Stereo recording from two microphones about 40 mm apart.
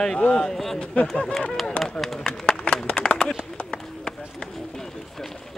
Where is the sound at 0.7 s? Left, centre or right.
Left.